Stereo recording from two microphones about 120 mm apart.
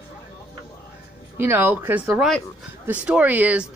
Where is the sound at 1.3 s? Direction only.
20° right (ahead or behind).